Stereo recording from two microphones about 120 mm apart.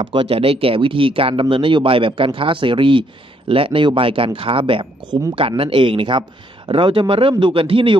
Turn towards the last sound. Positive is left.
turn(degrees=-50)  # may be behind; listen again after turning